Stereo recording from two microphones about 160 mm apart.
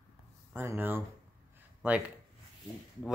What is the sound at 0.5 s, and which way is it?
Speech, 10° right (ahead or behind).